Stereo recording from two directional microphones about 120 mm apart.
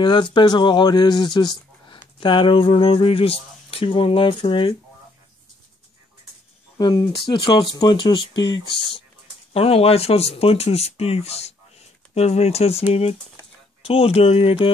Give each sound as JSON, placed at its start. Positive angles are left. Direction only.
{"t": 0.0, "sound": "speech", "side_deg": 40}
{"t": 6.8, "sound": "speech", "side_deg": 40}
{"t": 9.5, "sound": "speech", "side_deg": 55}
{"t": 13.8, "sound": "speech", "side_deg": 55}